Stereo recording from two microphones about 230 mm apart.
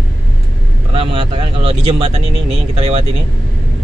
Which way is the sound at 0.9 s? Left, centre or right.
Right.